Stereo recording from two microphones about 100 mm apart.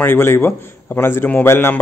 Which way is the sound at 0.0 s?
25° left (ahead or behind).